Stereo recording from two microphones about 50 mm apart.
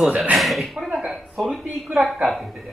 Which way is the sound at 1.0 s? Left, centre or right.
Right.